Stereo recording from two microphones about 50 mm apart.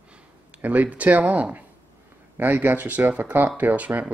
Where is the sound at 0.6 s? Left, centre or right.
Right.